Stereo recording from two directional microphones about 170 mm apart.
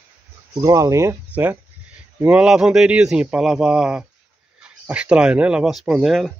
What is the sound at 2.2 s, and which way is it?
Speech, 5° right (ahead or behind).